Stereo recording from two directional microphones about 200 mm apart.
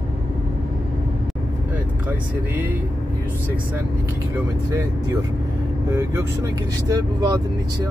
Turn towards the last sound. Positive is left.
turn(degrees=-20)  # may be behind; listen again after turning